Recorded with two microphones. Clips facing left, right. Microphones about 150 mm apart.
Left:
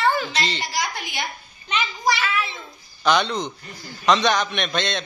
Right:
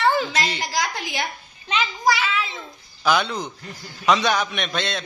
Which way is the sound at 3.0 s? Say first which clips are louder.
Left 1 dB; 5° right (ahead or behind).